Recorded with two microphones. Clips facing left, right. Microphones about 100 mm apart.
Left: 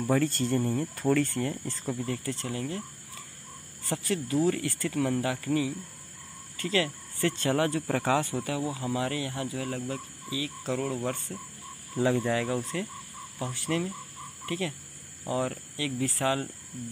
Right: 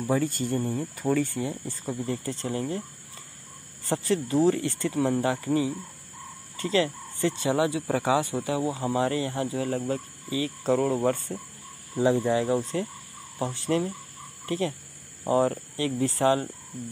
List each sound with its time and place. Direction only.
0.0 s speech: 5° right (ahead or behind)
1.9 s speech: 20° right (ahead or behind)
3.9 s speech: 30° right (ahead or behind)
12.0 s speech: 20° right (ahead or behind)